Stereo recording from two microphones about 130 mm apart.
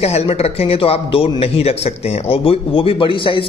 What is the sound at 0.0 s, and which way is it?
A man's voice, 55° left (ahead or behind).